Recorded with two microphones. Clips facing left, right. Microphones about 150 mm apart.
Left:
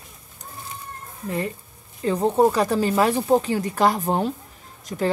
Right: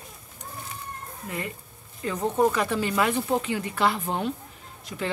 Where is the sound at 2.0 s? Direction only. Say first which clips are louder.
Left 5 dB; 30° left (ahead or behind).